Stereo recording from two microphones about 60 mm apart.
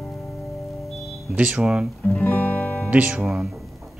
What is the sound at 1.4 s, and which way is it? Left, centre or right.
Speech, right.